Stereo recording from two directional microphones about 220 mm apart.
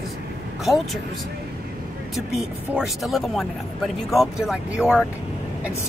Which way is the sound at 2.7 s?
Centre (ahead or behind).